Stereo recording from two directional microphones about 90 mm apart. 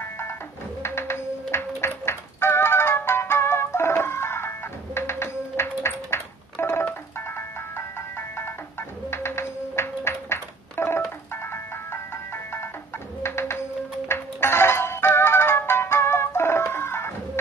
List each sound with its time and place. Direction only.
0.0 s music: 25° left (ahead or behind)
13.2 s bird: 30° left (ahead or behind)
14.0 s music: 25° left (ahead or behind)